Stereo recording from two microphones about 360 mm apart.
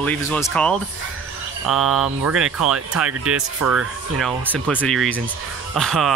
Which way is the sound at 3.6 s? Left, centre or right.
Right.